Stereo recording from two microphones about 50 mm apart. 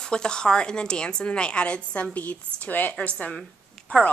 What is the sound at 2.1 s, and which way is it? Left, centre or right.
Speech, left.